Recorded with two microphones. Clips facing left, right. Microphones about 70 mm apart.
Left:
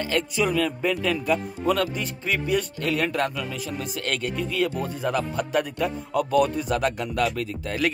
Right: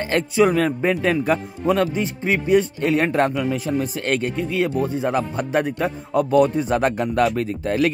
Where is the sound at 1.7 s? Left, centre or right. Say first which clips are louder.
Right 5 dB; right.